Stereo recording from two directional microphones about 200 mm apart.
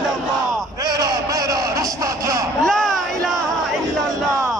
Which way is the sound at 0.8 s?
20° right (ahead or behind).